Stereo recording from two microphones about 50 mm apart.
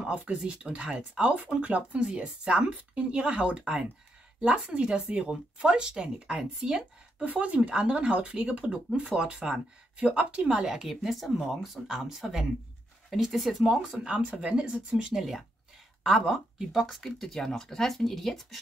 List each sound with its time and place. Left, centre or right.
0.1 s speech: right
1.2 s a woman's voice: right
10.8 s speech: centre
13.9 s speech: right
15.1 s speech: centre